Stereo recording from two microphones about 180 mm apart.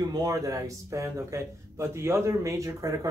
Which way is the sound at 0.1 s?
20° right (ahead or behind).